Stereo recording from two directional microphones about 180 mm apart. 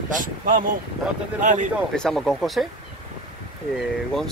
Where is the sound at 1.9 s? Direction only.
5° left (ahead or behind).